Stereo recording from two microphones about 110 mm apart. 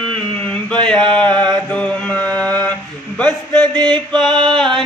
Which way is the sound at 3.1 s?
15° left (ahead or behind).